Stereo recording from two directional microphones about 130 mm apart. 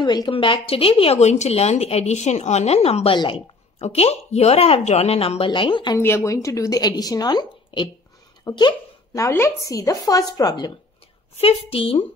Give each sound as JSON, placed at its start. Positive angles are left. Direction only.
{"t": 0.0, "sound": "speech", "side_deg": 35}
{"t": 3.8, "sound": "speech", "side_deg": 55}
{"t": 5.9, "sound": "speech", "side_deg": 20}
{"t": 11.3, "sound": "speech", "side_deg": 50}